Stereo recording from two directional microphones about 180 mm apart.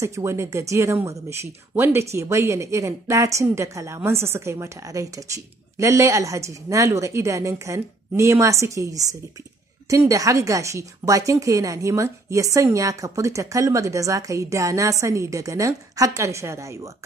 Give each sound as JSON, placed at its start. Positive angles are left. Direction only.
{"t": 0.0, "sound": "speech", "side_deg": -15}